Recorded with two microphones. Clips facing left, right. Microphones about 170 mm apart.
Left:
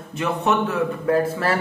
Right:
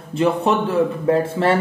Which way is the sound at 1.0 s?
25° right (ahead or behind).